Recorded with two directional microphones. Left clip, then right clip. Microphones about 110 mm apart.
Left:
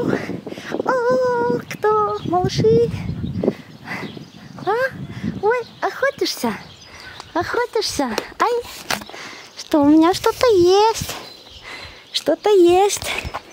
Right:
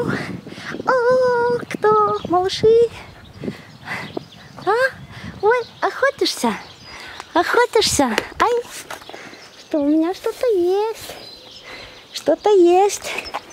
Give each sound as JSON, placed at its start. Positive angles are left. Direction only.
{"t": 0.0, "sound": "a sound", "side_deg": 5}
{"t": 7.2, "sound": "speech", "side_deg": -10}
{"t": 8.1, "sound": "speech", "side_deg": 5}
{"t": 9.6, "sound": "speech", "side_deg": 45}
{"t": 11.7, "sound": "speech", "side_deg": 15}